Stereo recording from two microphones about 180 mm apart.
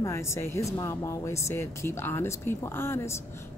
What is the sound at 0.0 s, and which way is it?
A woman's voice, 15° left (ahead or behind).